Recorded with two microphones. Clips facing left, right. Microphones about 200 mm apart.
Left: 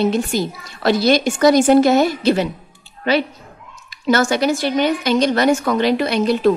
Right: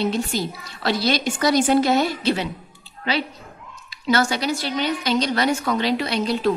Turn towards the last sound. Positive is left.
turn(degrees=55)  # may be behind; listen again after turning